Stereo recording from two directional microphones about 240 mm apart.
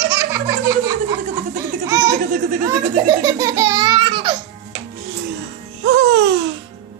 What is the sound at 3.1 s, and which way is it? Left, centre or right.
Baby laughter, centre.